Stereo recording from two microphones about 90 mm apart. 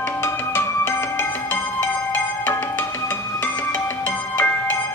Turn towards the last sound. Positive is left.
turn(degrees=20)  # may be behind; listen again after turning